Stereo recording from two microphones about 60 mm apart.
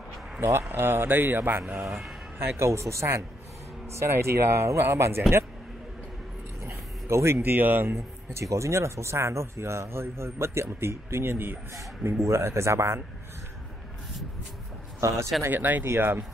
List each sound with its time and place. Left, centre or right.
0.4 s speech: right
0.7 s speech: right
1.9 s speech: centre
2.3 s speech: right
6.6 s speech: right
12.2 s speech: right
15.0 s speech: right
15.5 s speech: right
15.8 s speech: right